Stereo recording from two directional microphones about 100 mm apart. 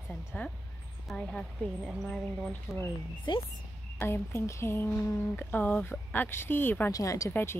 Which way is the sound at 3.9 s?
25° left (ahead or behind).